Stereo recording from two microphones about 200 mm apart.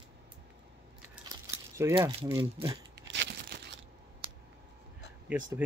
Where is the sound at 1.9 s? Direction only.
20° right (ahead or behind).